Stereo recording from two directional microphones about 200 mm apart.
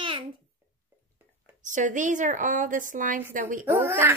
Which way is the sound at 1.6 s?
40° right (ahead or behind).